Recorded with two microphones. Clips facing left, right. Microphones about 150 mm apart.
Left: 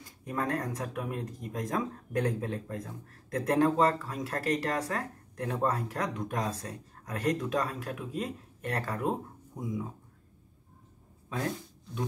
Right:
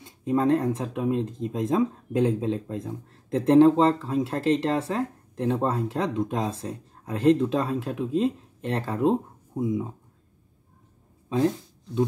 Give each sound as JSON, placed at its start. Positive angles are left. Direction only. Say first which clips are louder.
{"t": 0.0, "sound": "speech", "louder": "right 10 dB", "side_deg": -25}
{"t": 11.2, "sound": "speech", "louder": "right 10 dB", "side_deg": -25}